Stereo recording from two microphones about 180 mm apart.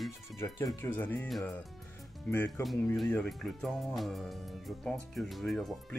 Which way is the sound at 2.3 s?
15° left (ahead or behind).